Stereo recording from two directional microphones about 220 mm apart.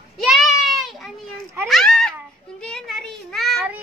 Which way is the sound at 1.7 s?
Centre (ahead or behind).